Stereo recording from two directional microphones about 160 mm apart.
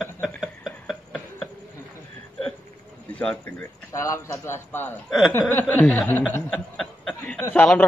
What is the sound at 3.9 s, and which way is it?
A man's voice, 20° left (ahead or behind).